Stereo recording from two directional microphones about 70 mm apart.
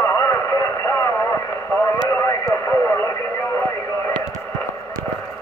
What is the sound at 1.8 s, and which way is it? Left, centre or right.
Radio, left.